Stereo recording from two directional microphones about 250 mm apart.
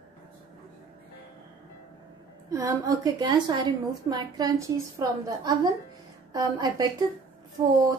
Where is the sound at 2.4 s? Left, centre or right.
Centre.